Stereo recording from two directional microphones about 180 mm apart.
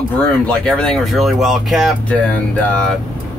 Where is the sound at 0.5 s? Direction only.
5° left (ahead or behind).